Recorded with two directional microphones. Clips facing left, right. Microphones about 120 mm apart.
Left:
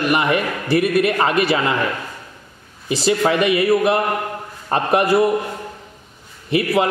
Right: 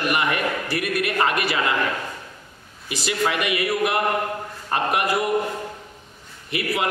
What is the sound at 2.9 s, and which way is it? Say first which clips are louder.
A man's voice: left 7 dB; 30° left (ahead or behind).